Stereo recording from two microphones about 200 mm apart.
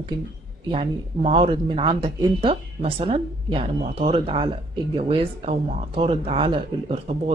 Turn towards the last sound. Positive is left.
turn(degrees=-30)  # may be behind; listen again after turning